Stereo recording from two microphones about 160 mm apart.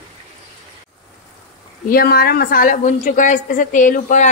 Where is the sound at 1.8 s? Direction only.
70° left (ahead or behind); by 4.3 s 50° left (ahead or behind).